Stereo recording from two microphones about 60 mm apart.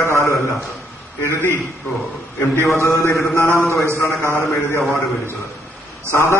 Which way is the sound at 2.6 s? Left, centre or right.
Left.